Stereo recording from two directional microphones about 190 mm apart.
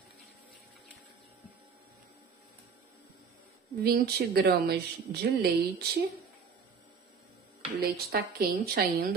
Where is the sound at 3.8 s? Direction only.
55° right (ahead or behind).